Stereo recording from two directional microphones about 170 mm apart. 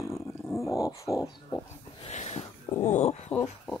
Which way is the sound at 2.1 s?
40° left (ahead or behind).